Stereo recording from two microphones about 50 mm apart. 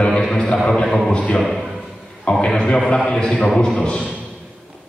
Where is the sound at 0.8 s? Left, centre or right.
Centre.